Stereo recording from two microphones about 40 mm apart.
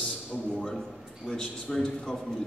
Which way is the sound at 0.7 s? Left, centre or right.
Centre.